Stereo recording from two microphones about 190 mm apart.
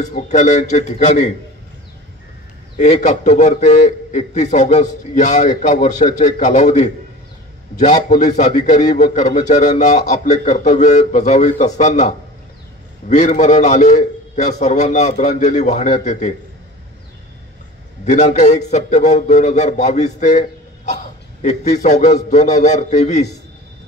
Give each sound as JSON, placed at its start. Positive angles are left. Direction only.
{"t": 0.0, "sound": "a man's voice", "side_deg": 40}
{"t": 2.8, "sound": "a man's voice", "side_deg": 40}
{"t": 18.0, "sound": "a man's voice", "side_deg": 40}